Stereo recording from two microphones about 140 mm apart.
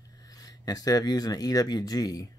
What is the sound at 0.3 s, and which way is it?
Speech, 25° left (ahead or behind).